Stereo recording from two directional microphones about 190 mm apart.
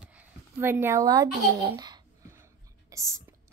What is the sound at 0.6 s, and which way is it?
Speech, 10° right (ahead or behind).